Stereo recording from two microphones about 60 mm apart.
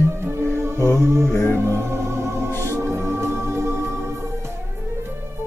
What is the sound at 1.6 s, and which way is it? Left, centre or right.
Music, right.